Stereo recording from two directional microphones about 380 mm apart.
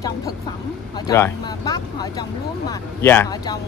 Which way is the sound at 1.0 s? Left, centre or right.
Centre.